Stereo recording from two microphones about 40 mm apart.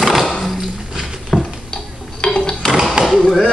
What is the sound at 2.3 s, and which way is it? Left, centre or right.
Dishes, centre.